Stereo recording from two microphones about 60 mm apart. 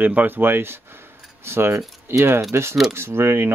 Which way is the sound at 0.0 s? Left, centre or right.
Right.